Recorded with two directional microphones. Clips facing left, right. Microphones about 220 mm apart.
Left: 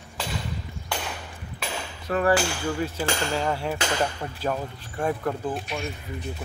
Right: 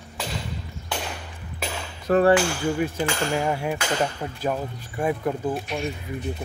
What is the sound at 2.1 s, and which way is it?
Speech, 40° right (ahead or behind).